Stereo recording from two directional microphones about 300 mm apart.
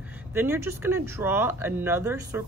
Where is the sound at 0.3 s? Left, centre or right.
Centre.